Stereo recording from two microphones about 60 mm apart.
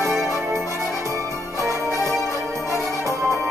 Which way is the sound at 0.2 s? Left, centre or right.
Centre.